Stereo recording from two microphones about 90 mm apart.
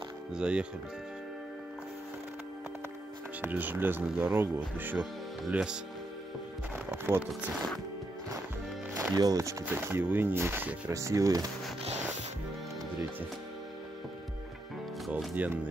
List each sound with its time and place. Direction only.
0.4 s speech: 10° right (ahead or behind)
3.3 s speech: 20° right (ahead or behind)
5.5 s speech: 10° right (ahead or behind)
6.9 s speech: 20° right (ahead or behind)
9.1 s speech: 45° right (ahead or behind); by 10.8 s 20° right (ahead or behind)
10.9 s speech: 35° right (ahead or behind)
15.3 s speech: 20° right (ahead or behind)